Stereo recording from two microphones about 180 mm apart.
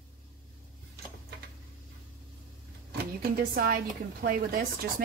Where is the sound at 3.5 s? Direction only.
55° right (ahead or behind).